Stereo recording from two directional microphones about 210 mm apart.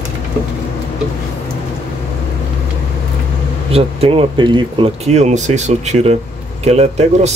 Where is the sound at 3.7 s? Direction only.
25° right (ahead or behind).